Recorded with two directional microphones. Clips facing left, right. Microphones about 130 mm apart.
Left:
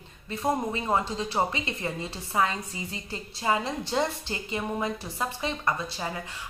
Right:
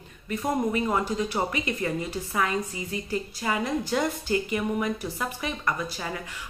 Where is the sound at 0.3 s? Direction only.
25° left (ahead or behind).